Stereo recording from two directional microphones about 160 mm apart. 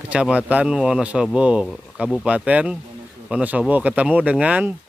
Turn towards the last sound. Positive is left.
turn(degrees=-10)  # may be behind; listen again after turning